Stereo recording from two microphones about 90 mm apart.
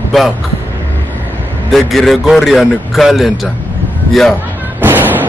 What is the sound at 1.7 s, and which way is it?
A man's voice, centre (ahead or behind).